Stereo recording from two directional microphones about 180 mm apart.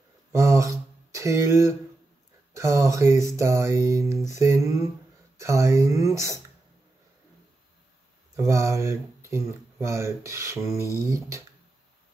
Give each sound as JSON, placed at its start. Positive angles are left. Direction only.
{"t": 0.3, "sound": "a sound", "side_deg": -15}
{"t": 2.5, "sound": "speech", "side_deg": -15}
{"t": 8.4, "sound": "speech", "side_deg": -15}